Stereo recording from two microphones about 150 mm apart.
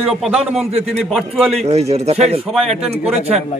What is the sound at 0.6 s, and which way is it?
Speech, 45° right (ahead or behind).